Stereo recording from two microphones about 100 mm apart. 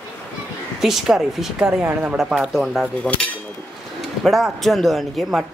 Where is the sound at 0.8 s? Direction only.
5° right (ahead or behind).